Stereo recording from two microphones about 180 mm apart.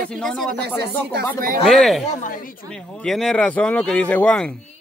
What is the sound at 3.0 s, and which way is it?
Speech, centre (ahead or behind).